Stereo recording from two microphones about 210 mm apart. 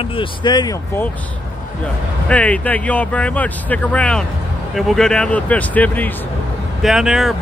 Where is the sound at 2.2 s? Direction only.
5° left (ahead or behind).